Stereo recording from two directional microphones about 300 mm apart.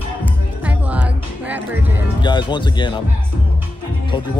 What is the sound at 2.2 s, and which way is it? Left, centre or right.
Speech, centre.